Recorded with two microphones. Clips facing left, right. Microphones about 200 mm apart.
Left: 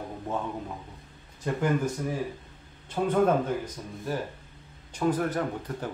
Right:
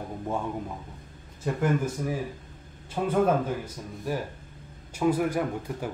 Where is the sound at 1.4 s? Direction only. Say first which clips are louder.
Even; 5° right (ahead or behind).